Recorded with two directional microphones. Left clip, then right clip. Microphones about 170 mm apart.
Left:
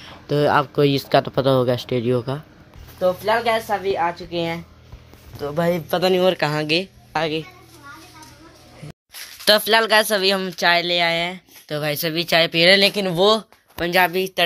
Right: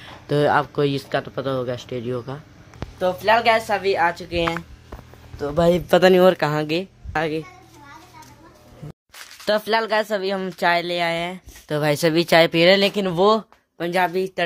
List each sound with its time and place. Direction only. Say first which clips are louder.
0.0 s speech: even; centre (ahead or behind); by 2.4 s 20° left (ahead or behind)
3.0 s speech: right 1 dB; 15° right (ahead or behind)
5.6 s speech: right 4 dB; 45° right (ahead or behind)
6.3 s speech: left 2 dB; 15° right (ahead or behind)
7.1 s a child's voice: even; 25° right (ahead or behind)
9.4 s speech: left 5 dB; 5° right (ahead or behind)
11.6 s speech: right 4 dB; 30° right (ahead or behind)
12.6 s speech: left 1 dB; 15° right (ahead or behind)